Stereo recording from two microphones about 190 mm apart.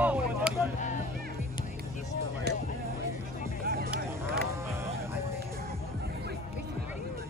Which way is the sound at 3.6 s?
55° right (ahead or behind).